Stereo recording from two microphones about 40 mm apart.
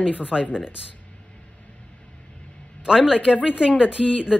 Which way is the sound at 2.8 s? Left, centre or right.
Centre.